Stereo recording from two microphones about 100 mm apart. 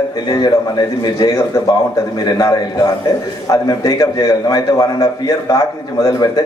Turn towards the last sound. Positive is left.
turn(degrees=35)  # may be behind; listen again after turning